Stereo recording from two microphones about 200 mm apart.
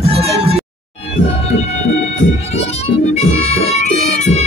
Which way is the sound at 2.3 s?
30° left (ahead or behind).